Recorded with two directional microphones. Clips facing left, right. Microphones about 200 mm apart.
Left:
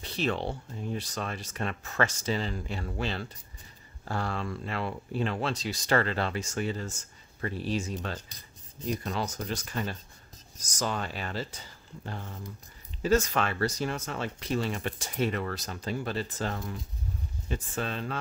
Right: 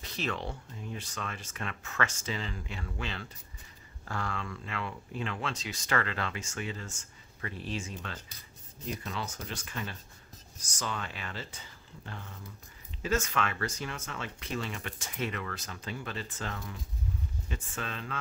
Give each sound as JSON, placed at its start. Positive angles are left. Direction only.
{"t": 0.0, "sound": "speech", "side_deg": 30}